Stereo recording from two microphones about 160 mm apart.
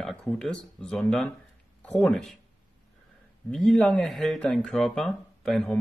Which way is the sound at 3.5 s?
Centre (ahead or behind).